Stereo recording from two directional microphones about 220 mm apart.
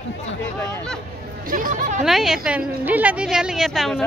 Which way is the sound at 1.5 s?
35° right (ahead or behind).